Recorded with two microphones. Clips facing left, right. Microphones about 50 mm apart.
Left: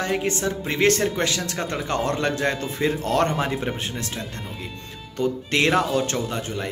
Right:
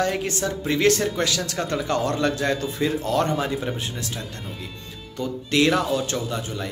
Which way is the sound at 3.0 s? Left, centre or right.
Left.